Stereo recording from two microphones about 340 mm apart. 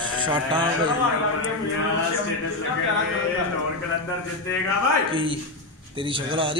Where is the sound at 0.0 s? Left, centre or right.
Centre.